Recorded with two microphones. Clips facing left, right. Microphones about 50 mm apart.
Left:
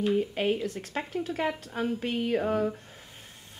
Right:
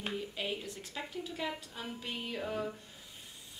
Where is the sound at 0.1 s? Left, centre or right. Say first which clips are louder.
Left 11 dB; left.